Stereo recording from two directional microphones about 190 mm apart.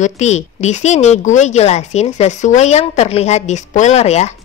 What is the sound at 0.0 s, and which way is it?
A woman's voice, 35° left (ahead or behind).